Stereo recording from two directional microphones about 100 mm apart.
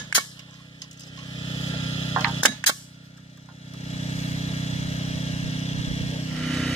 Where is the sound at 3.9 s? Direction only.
90° left.